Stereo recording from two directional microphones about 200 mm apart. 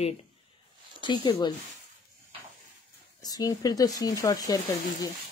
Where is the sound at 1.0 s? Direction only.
25° left (ahead or behind).